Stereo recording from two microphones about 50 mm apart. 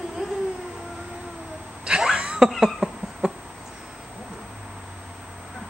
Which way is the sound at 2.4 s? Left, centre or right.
Centre.